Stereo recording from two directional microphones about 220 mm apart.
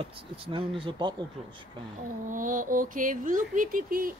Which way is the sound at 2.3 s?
35° right (ahead or behind).